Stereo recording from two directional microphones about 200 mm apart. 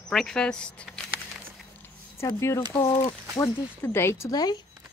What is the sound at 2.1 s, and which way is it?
Speech, 15° left (ahead or behind).